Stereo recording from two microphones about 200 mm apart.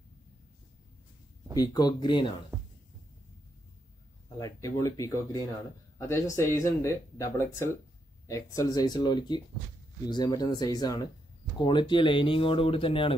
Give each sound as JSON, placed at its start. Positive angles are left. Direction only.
{"t": 1.5, "sound": "speech", "side_deg": 20}
{"t": 4.4, "sound": "speech", "side_deg": 15}